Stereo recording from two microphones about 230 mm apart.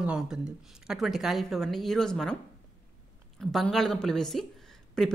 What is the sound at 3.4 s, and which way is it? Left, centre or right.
Speech, centre.